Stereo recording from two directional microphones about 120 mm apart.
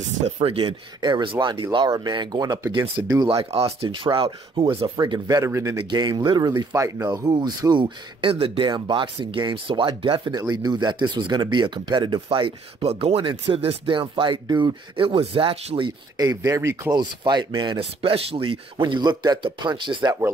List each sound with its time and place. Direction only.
0.4 s speech: 50° right (ahead or behind)
3.3 s speech: 55° right (ahead or behind)
4.9 s speech: 35° right (ahead or behind)
5.5 s speech: 25° right (ahead or behind)
5.9 s speech: 35° right (ahead or behind)
16.9 s speech: 35° right (ahead or behind)